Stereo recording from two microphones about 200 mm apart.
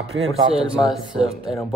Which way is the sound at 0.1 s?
70° right (ahead or behind).